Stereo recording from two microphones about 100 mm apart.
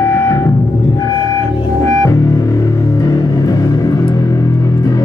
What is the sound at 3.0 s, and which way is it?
Music, 35° left (ahead or behind).